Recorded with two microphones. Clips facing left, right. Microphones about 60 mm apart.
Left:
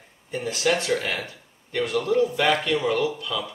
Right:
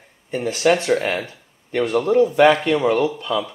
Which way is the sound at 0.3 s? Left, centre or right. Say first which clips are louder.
Right 6 dB; right.